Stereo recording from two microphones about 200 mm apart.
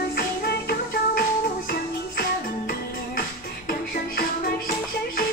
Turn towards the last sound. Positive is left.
turn(degrees=50)  # may be behind; listen again after turning